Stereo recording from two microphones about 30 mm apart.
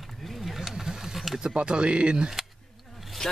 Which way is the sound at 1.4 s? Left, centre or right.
Right.